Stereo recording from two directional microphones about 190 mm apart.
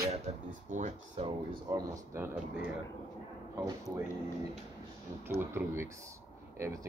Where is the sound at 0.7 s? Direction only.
40° right (ahead or behind).